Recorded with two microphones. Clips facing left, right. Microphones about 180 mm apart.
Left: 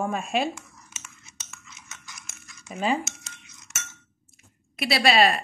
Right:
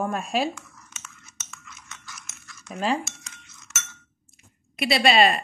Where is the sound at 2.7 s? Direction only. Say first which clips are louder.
Even; centre (ahead or behind).